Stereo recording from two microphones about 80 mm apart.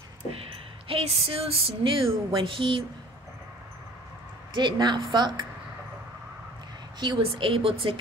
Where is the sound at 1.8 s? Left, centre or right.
Right.